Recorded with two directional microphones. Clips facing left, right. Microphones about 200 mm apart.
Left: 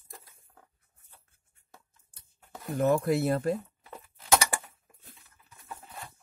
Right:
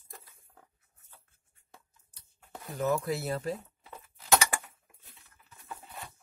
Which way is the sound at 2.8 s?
50° left (ahead or behind).